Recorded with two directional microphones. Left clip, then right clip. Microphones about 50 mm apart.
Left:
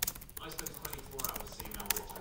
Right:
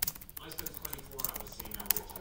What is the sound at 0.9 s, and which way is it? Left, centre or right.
Mechanisms, centre.